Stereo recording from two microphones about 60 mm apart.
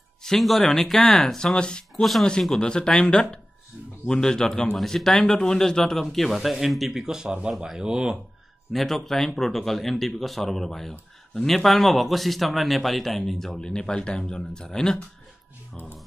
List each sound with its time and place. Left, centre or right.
0.2 s speech: centre
2.0 s speech: centre
2.6 s speech: centre
7.2 s speech: right
7.5 s speech: centre
8.7 s speech: centre